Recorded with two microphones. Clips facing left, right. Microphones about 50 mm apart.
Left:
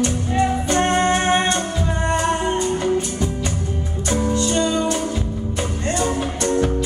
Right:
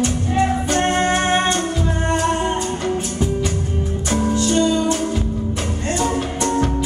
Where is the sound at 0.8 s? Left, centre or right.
Centre.